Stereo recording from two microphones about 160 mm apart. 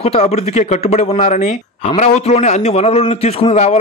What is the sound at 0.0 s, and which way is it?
Speech, 40° left (ahead or behind).